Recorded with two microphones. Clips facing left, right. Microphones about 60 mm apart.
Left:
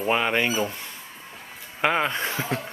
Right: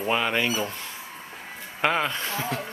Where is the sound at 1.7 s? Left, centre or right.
Centre.